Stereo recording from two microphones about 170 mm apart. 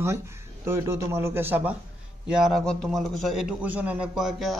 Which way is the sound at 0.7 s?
15° right (ahead or behind).